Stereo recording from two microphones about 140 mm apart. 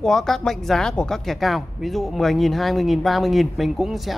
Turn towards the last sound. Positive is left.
turn(degrees=0)  # may be behind; listen again after turning